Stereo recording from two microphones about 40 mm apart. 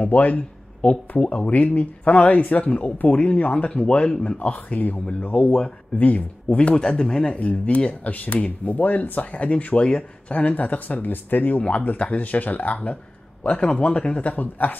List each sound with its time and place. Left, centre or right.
0.1 s speech: left
5.2 s speech: left
6.7 s speech: left
7.3 s speech: left
11.7 s speech: left
13.4 s speech: left
14.3 s speech: left